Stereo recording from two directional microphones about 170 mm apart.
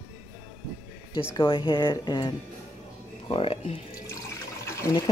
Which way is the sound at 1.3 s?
30° left (ahead or behind).